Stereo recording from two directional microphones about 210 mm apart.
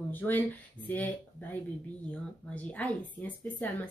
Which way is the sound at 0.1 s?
10° left (ahead or behind).